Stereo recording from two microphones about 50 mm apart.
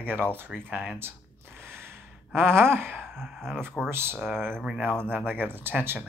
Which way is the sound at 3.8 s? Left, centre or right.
Right.